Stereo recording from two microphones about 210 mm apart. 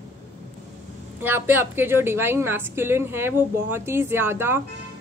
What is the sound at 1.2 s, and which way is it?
A woman's voice, 10° right (ahead or behind).